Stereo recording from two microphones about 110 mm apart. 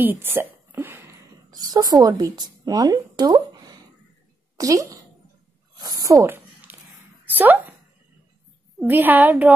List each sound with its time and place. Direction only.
0.0 s speech: 20° right (ahead or behind)
1.5 s a woman's voice: 35° right (ahead or behind)
6.3 s a sound: 15° right (ahead or behind)
7.3 s a woman's voice: 15° right (ahead or behind)
8.7 s a woman's voice: 15° right (ahead or behind)